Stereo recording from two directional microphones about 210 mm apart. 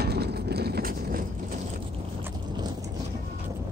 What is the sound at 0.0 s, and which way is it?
Vehicle, 50° right (ahead or behind).